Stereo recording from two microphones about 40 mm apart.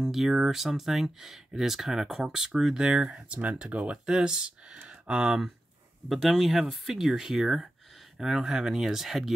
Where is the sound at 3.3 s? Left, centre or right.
Right.